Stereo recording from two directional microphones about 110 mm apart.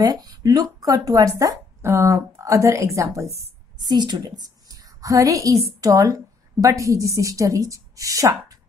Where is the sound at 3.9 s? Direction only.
40° right (ahead or behind).